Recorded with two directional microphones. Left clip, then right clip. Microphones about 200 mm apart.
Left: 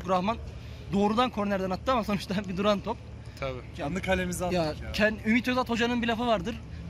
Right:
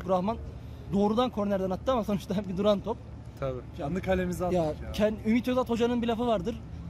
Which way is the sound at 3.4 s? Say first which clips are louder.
Even; 40° right (ahead or behind).